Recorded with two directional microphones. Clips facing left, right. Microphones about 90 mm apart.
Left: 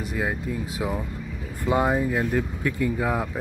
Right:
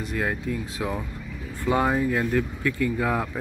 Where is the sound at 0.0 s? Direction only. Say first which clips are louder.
Even; 10° left (ahead or behind).